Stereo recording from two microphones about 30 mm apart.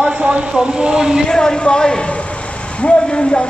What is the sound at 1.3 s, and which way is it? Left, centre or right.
Speech, left.